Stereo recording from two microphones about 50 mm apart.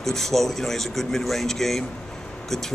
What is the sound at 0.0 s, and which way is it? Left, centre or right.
Speech, centre.